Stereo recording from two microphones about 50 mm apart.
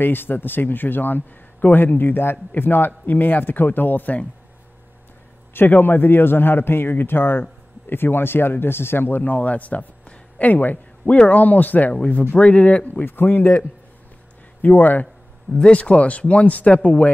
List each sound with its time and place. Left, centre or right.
0.0 s a man's voice: left
5.5 s a man's voice: left
9.2 s speech: left
11.9 s speech: left
13.0 s a man's voice: left
15.5 s speech: left